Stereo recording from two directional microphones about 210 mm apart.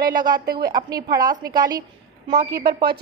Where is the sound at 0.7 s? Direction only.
20° right (ahead or behind).